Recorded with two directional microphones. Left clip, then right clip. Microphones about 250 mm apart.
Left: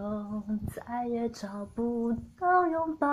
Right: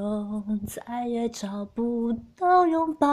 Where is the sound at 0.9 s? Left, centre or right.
Right.